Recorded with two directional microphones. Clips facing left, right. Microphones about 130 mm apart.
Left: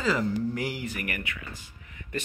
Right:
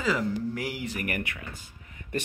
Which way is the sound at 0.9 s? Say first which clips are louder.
Right 3 dB; 45° right (ahead or behind).